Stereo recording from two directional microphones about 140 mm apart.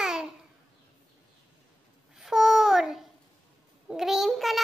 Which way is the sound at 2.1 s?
Centre (ahead or behind).